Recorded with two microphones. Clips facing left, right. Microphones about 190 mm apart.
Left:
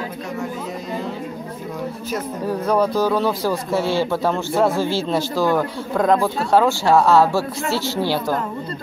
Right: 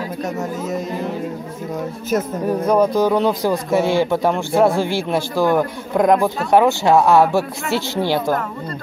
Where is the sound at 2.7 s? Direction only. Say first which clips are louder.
Right 3 dB; 20° right (ahead or behind).